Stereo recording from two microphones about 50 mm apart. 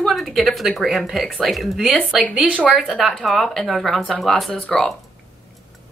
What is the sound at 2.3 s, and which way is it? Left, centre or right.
Speech, right.